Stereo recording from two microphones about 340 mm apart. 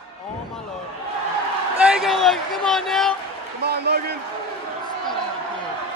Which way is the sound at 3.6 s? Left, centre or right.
Right.